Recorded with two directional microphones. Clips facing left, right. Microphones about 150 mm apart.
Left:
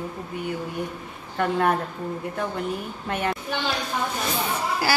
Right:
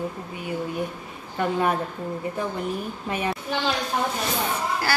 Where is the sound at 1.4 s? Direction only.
10° right (ahead or behind).